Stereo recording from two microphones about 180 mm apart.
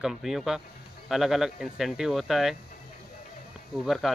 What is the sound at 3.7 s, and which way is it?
Speech, centre (ahead or behind).